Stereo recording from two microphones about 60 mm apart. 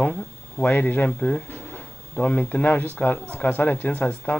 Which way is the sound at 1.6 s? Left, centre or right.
Left.